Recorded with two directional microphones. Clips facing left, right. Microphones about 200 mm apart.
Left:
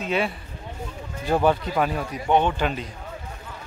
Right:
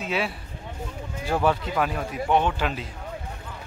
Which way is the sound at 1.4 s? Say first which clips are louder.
Left 1 dB; centre (ahead or behind).